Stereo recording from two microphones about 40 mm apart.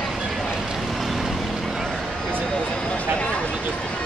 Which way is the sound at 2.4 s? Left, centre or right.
Left.